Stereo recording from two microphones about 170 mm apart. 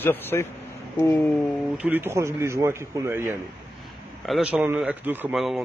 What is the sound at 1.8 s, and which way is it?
A man's voice, 10° right (ahead or behind).